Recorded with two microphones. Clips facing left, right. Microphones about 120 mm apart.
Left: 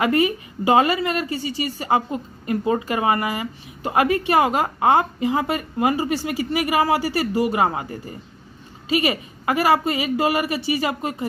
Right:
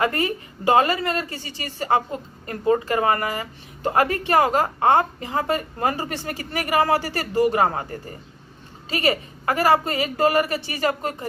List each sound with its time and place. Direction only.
0.0 s a woman's voice: 15° left (ahead or behind)
8.8 s a woman's voice: 15° left (ahead or behind)